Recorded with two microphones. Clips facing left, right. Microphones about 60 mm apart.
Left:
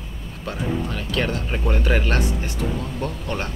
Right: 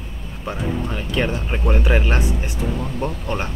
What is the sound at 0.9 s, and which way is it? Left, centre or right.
Speech, centre.